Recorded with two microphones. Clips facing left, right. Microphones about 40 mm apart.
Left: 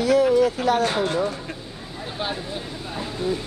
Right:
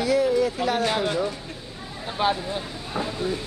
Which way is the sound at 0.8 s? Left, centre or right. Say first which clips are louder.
Left 1 dB; centre.